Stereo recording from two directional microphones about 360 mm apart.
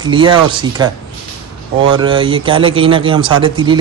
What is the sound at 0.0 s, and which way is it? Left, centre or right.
Speech, centre.